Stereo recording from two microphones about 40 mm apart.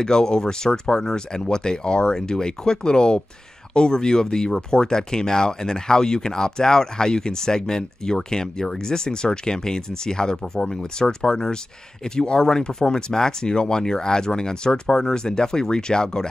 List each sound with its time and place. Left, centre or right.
0.0 s speech: centre